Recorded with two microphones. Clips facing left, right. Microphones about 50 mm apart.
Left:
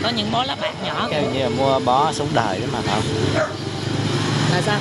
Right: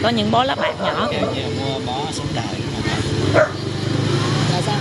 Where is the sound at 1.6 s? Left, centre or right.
Left.